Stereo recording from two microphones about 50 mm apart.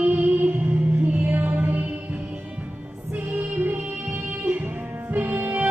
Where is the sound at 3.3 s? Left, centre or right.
Right.